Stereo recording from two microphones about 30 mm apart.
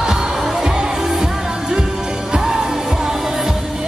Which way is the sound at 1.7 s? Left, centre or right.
Right.